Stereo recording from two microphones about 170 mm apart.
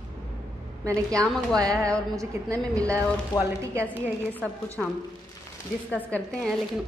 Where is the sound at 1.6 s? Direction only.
20° right (ahead or behind).